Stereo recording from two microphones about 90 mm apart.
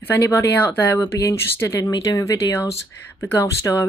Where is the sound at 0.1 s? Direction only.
30° left (ahead or behind).